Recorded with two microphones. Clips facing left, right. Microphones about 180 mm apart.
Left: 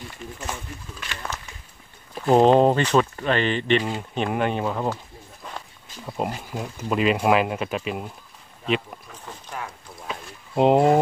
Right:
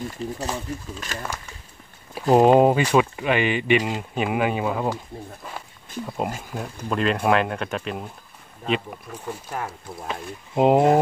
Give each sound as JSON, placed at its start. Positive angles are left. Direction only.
{"t": 0.2, "sound": "speech", "side_deg": -35}
{"t": 2.1, "sound": "speech", "side_deg": -10}
{"t": 5.4, "sound": "a sound", "side_deg": -5}
{"t": 6.0, "sound": "speech", "side_deg": 0}
{"t": 10.0, "sound": "speech", "side_deg": 0}